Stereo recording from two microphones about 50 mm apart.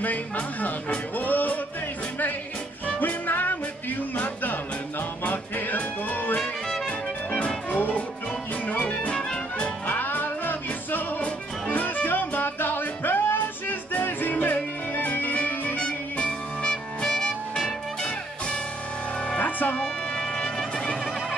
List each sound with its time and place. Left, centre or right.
0.0 s speech: left
2.9 s music: left
7.3 s music: left
9.0 s music: left
9.8 s music: left
15.8 s music: left
19.3 s music: left
19.8 s music: centre